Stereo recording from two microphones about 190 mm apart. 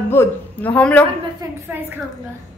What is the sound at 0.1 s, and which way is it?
Speech, 10° left (ahead or behind).